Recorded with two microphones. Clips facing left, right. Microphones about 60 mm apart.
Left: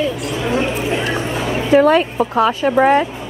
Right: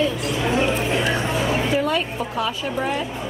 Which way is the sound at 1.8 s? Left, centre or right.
Left.